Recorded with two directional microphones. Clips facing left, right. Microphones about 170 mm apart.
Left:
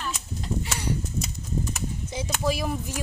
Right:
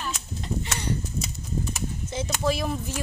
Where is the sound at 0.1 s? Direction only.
5° left (ahead or behind).